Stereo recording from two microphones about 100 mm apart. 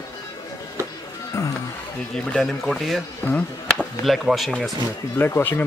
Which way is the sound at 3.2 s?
20° left (ahead or behind).